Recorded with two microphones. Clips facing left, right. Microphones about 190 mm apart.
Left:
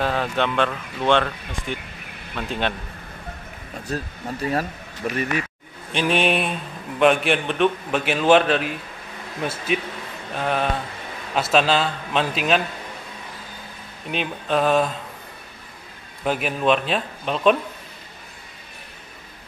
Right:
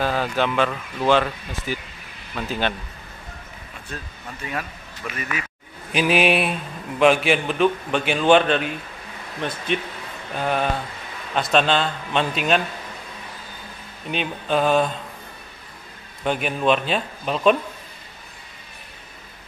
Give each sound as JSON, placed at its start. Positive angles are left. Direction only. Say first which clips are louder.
{"t": 0.0, "sound": "speech", "louder": "even", "side_deg": 0}
{"t": 3.8, "sound": "speech", "louder": "left 8 dB", "side_deg": 35}
{"t": 5.9, "sound": "speech", "louder": "right 2 dB", "side_deg": -5}
{"t": 14.0, "sound": "speech", "louder": "even", "side_deg": 0}
{"t": 16.3, "sound": "speech", "louder": "even", "side_deg": 0}